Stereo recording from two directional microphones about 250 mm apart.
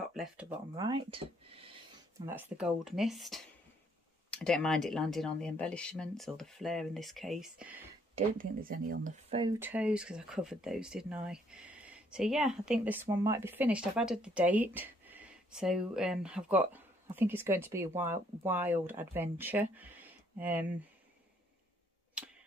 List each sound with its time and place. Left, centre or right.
0.1 s speech: centre
0.8 s speech: centre
2.2 s speech: centre
8.4 s speech: right
9.6 s speech: centre